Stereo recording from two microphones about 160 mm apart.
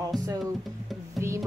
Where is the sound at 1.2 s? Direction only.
15° right (ahead or behind).